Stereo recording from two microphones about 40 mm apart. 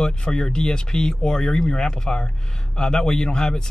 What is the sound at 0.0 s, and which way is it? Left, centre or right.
Speech, centre.